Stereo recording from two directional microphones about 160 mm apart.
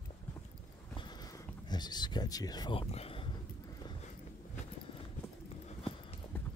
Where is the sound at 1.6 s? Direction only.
25° left (ahead or behind).